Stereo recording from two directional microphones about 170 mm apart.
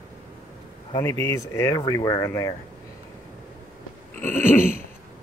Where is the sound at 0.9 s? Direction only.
15° left (ahead or behind).